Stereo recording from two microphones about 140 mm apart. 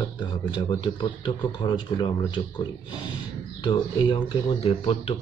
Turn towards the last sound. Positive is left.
turn(degrees=40)  # may be behind; listen again after turning